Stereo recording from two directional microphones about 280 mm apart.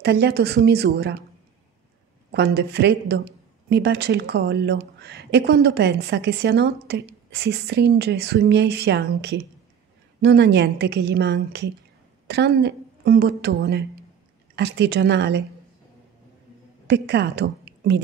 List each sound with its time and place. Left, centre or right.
0.0 s speech: right
2.3 s speech: right
16.8 s a woman's voice: right